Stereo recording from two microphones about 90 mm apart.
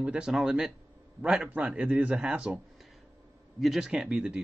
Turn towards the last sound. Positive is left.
turn(degrees=-10)  # may be behind; listen again after turning